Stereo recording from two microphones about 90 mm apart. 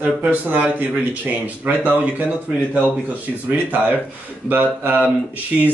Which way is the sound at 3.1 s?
20° right (ahead or behind).